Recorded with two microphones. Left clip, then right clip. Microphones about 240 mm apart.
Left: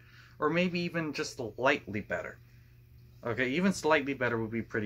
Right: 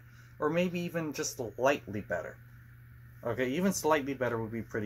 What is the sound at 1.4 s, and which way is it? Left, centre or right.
Speech, left.